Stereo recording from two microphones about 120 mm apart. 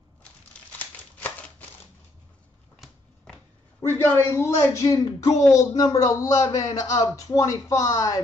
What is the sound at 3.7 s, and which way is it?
A man's voice, 20° left (ahead or behind).